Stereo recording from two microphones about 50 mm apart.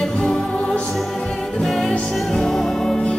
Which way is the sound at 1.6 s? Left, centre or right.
Centre.